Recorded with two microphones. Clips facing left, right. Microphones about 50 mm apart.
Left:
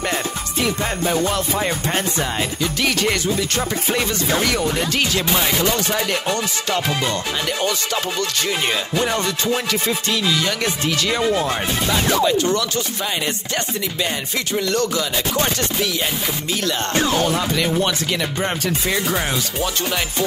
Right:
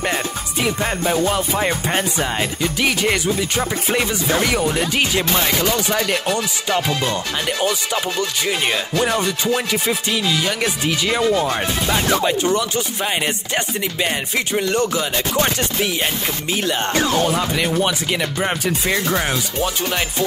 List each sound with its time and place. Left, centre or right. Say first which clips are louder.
0.6 s music: right 1 dB; centre
7.6 s music: right 1 dB; centre
11.2 s speech: right 2 dB; centre
11.9 s music: left 1 dB; right
14.5 s music: even; right
15.3 s music: right 2 dB; right
17.4 s music: right 1 dB; centre